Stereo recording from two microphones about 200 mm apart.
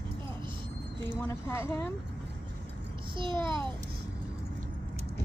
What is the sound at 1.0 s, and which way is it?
Speech, 10° left (ahead or behind).